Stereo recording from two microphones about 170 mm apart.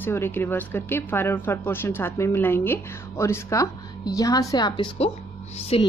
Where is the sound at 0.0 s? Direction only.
15° left (ahead or behind).